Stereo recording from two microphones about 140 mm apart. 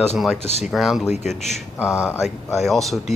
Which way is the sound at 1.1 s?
55° left (ahead or behind).